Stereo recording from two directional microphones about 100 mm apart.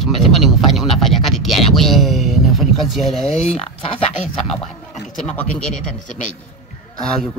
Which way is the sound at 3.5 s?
80° left.